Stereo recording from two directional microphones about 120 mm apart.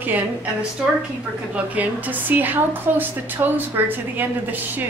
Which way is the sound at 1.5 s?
10° right (ahead or behind).